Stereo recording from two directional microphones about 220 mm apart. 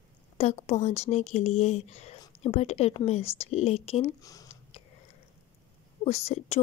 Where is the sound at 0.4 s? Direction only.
30° left (ahead or behind).